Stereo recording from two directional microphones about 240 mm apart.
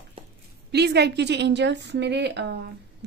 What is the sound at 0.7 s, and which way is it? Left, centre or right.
A woman's voice, right.